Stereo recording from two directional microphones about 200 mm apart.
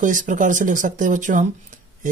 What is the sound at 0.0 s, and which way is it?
Speech, 40° right (ahead or behind).